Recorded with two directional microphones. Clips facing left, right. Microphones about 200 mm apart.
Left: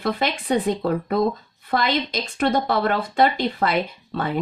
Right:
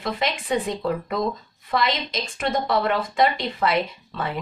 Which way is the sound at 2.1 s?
35° left (ahead or behind).